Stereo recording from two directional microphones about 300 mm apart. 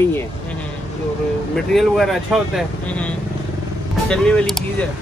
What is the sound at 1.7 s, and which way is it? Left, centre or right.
Speech, centre.